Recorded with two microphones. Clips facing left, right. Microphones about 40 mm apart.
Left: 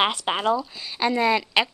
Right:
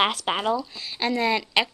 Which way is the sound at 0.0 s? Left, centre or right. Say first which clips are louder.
Left 1 dB; centre.